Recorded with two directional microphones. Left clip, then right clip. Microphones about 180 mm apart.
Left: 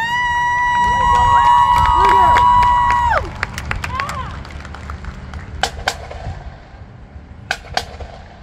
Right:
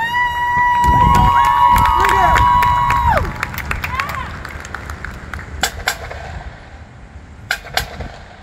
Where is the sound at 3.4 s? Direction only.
90° right.